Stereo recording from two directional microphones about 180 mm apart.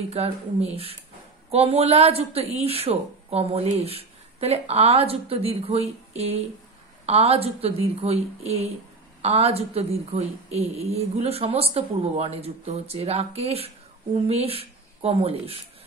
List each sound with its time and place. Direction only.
0.1 s speech: 35° right (ahead or behind)